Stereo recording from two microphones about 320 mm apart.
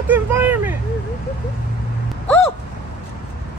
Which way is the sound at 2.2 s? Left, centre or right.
Centre.